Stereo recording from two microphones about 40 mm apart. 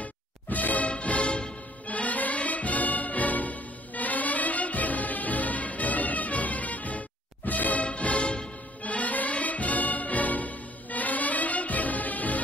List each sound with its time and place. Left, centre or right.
0.0 s music: left